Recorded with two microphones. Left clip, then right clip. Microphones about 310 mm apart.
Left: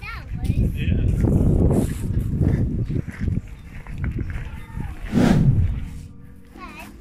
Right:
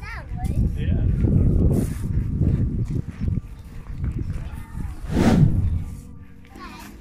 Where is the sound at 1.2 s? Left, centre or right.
Left.